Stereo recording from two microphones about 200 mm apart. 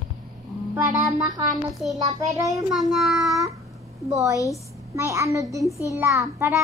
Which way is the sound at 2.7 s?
Centre (ahead or behind).